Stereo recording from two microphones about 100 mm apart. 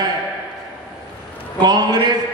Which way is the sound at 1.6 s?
45° right (ahead or behind).